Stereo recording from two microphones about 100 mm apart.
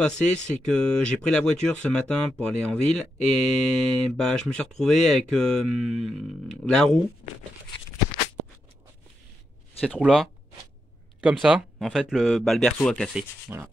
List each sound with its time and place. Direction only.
0.0 s speech: 10° left (ahead or behind)
9.9 s speech: 5° right (ahead or behind)
11.8 s speech: 5° right (ahead or behind)
13.5 s speech: 25° right (ahead or behind)